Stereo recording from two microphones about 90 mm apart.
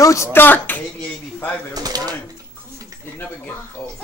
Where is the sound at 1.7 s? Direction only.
45° right (ahead or behind).